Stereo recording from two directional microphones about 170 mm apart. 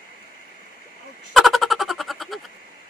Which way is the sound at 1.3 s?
Centre (ahead or behind).